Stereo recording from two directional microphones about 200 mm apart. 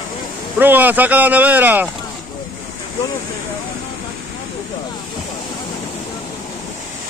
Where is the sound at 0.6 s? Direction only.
10° right (ahead or behind).